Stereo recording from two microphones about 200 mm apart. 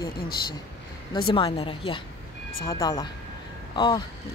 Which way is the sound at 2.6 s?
15° left (ahead or behind).